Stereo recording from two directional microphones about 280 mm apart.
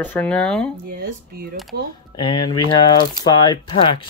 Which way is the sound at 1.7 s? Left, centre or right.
Right.